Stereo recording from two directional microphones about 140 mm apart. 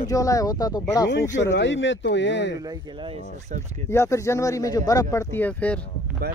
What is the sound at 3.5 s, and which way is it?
Speech, 70° right (ahead or behind).